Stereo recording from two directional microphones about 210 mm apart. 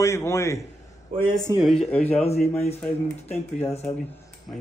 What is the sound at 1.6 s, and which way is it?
Speech, centre (ahead or behind).